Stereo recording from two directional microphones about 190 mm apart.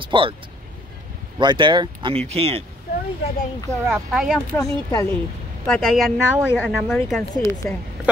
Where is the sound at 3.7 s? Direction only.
15° right (ahead or behind).